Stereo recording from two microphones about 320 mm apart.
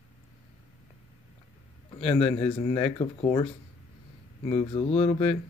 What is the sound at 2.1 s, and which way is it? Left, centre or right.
Speech, centre.